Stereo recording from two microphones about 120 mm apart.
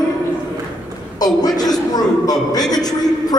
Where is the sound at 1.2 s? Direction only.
35° left (ahead or behind).